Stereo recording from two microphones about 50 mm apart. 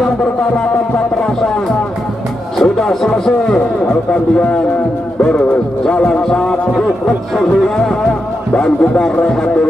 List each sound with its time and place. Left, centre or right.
2.6 s a man's voice: centre
5.9 s music: left
8.5 s speech: centre